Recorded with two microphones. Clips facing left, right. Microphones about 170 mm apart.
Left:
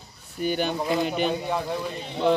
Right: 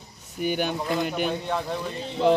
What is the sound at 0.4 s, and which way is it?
Speech, 10° right (ahead or behind).